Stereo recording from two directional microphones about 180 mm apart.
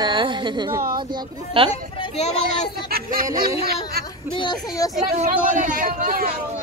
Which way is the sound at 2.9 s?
55° right (ahead or behind).